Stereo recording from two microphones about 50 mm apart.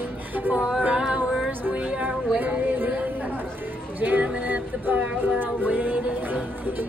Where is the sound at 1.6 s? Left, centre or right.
Right.